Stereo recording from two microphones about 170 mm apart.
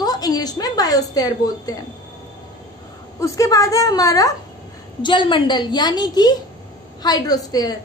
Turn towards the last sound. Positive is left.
turn(degrees=20)  # may be behind; listen again after turning